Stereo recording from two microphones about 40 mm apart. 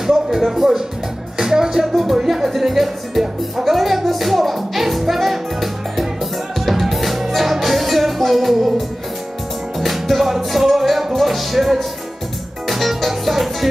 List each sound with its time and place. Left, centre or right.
0.0 s speech: centre
1.4 s music: centre
9.8 s music: centre